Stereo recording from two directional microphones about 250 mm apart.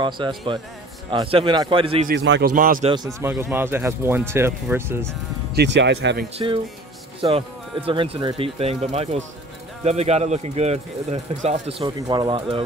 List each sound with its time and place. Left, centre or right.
0.0 s speech: centre
2.0 s speech: right
2.9 s speech: centre
5.5 s speech: right
6.3 s speech: centre